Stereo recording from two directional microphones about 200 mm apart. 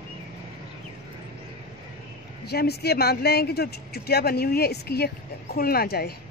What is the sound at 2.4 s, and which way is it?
Speech, 55° left (ahead or behind).